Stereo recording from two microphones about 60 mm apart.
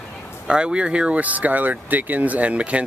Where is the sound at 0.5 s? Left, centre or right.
Centre.